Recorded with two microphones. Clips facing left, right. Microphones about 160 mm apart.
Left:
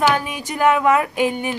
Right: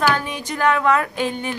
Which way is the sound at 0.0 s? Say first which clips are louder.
Left 2 dB; 10° left (ahead or behind).